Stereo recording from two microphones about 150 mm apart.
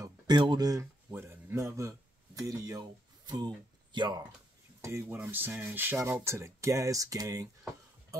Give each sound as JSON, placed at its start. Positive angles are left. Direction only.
{"t": 0.0, "sound": "a man's voice", "side_deg": -30}
{"t": 5.0, "sound": "speech", "side_deg": -10}